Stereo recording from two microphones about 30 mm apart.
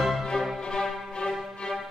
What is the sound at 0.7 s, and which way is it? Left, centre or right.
Music, left.